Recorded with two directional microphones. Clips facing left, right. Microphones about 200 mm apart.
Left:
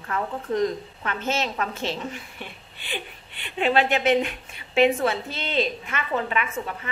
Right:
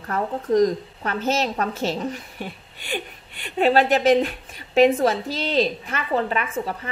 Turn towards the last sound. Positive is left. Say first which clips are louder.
# right 3 dB
turn(degrees=-35)  # may be behind; listen again after turning